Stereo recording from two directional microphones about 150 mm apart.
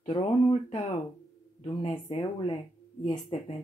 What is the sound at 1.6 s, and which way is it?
Speech, 35° left (ahead or behind).